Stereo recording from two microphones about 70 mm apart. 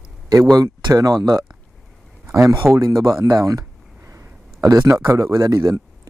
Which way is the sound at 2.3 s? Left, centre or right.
Right.